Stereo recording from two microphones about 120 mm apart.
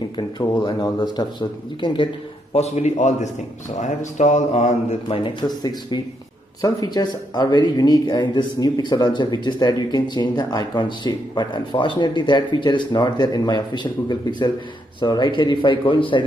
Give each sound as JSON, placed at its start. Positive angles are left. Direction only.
{"t": 0.2, "sound": "speech", "side_deg": 40}
{"t": 2.5, "sound": "speech", "side_deg": 65}
{"t": 5.0, "sound": "speech", "side_deg": 40}